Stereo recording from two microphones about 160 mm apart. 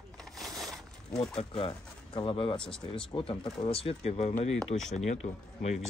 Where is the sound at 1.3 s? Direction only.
35° left (ahead or behind).